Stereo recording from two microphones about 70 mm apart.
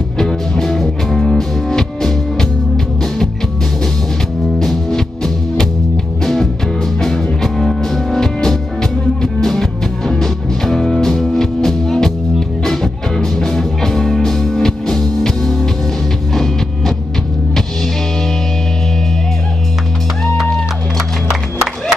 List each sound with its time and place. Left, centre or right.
0.2 s music: centre
4.6 s music: centre